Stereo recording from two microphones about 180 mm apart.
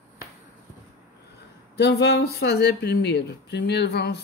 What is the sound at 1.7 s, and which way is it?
Speech, 65° left (ahead or behind).